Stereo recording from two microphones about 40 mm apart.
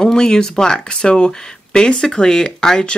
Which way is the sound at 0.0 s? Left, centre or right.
Centre.